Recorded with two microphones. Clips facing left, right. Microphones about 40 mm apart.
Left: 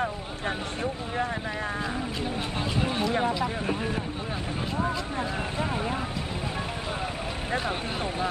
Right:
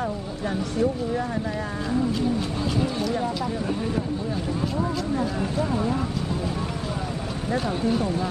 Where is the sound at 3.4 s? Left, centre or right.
Left.